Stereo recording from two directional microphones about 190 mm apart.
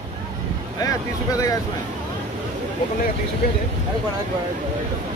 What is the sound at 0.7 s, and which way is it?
Speech, 15° left (ahead or behind).